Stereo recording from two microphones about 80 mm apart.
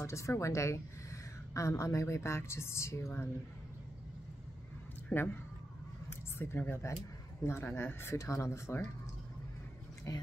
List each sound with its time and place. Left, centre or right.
0.0 s a woman's voice: left
5.1 s speech: left
6.0 s a sound: left
7.4 s a woman's voice: left
10.1 s speech: left